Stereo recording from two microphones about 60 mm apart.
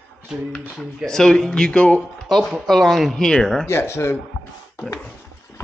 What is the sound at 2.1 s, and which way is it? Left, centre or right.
Speech, centre.